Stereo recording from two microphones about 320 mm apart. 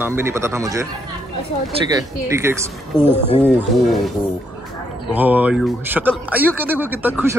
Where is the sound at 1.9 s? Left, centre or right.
Centre.